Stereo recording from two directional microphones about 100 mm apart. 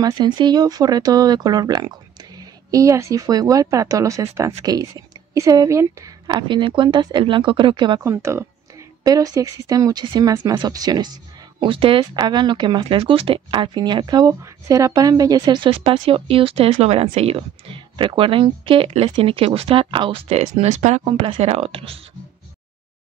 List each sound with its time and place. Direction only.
0.0 s speech: 45° right (ahead or behind); by 6.1 s 30° right (ahead or behind)
6.2 s speech: 55° right (ahead or behind)
8.0 s speech: 30° right (ahead or behind)
11.6 s speech: 60° right (ahead or behind)
12.8 s speech: 65° right (ahead or behind); by 14.3 s 45° right (ahead or behind)
14.4 s speech: 35° right (ahead or behind)
15.7 s speech: 70° right (ahead or behind)